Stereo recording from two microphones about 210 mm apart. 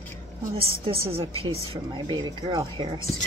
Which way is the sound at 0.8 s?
25° right (ahead or behind).